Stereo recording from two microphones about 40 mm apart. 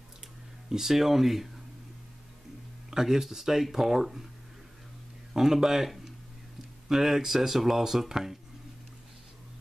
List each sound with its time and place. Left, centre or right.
0.7 s speech: centre
2.9 s speech: centre
5.3 s speech: centre
6.9 s speech: centre